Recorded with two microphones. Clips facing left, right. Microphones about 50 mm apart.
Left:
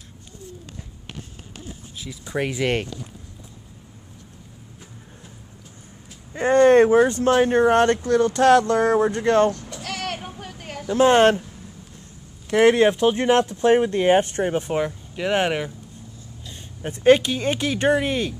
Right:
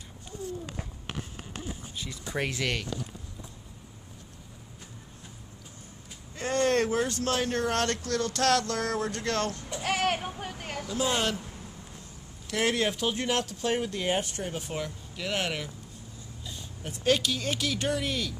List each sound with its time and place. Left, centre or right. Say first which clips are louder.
2.0 s speech: left 6 dB; centre
2.6 s speech: left 8 dB; left
6.3 s speech: left 12 dB; left
9.6 s a sound: right 2 dB; centre
10.9 s speech: left 14 dB; left
12.4 s speech: left 12 dB; left